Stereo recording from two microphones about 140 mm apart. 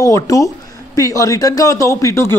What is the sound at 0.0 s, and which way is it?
Speech, 25° left (ahead or behind).